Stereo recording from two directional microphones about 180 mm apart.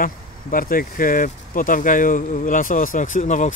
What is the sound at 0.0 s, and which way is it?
Speech, 50° left (ahead or behind).